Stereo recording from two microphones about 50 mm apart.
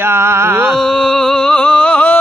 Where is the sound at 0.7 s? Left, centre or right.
Centre; by 2.2 s left.